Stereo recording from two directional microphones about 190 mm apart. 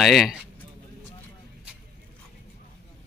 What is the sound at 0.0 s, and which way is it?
Speech, centre (ahead or behind).